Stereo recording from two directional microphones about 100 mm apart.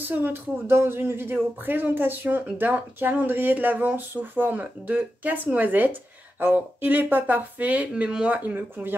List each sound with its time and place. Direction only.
0.1 s speech: 20° right (ahead or behind)